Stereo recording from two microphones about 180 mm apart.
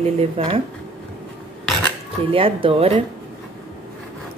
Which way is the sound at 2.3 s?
30° right (ahead or behind).